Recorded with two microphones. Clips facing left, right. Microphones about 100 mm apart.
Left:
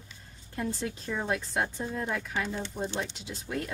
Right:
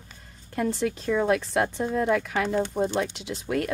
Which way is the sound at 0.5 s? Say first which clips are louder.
Right 7 dB; 75° right (ahead or behind).